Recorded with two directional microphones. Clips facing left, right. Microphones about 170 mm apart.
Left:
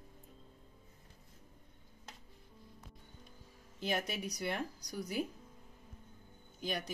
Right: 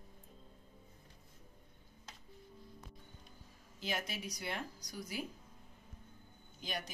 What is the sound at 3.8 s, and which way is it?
Speech, 60° left (ahead or behind).